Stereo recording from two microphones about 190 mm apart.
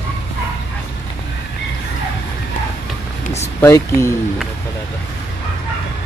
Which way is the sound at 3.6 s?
15° left (ahead or behind).